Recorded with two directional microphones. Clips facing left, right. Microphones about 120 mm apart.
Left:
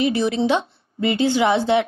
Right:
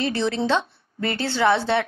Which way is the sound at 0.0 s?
15° left (ahead or behind).